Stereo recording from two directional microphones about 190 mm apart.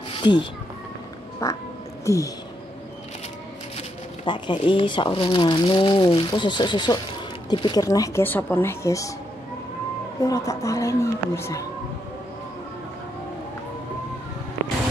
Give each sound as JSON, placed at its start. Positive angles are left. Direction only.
{"t": 0.2, "sound": "speech", "side_deg": 25}
{"t": 3.7, "sound": "speech", "side_deg": 25}
{"t": 10.2, "sound": "speech", "side_deg": 15}